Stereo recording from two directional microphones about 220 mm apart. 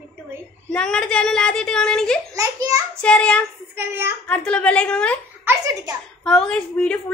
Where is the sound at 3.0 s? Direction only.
5° left (ahead or behind).